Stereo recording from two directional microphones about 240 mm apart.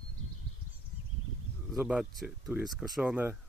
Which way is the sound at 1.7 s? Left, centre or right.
Centre.